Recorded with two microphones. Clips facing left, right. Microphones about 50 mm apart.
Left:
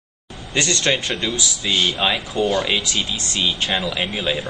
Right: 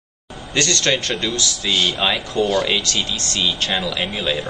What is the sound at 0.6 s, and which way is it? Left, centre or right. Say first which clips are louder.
Speech: right 1 dB; centre.